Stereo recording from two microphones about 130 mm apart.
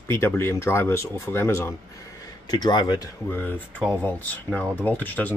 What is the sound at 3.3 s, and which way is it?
Speech, 15° left (ahead or behind).